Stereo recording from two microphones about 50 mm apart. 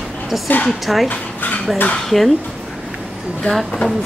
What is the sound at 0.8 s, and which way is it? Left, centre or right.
Speech, centre.